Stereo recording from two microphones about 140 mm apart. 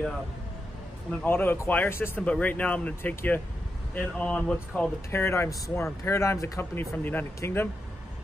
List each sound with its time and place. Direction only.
1.2 s speech: 15° left (ahead or behind)